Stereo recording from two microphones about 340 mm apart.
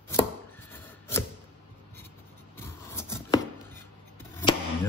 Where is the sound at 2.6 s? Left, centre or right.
Centre.